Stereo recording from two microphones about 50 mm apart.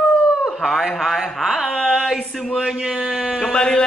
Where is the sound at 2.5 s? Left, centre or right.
Centre.